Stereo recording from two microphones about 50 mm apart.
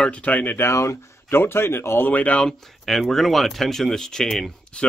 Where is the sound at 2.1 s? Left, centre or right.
Left.